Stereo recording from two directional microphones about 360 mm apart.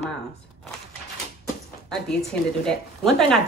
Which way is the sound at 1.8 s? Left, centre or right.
Centre.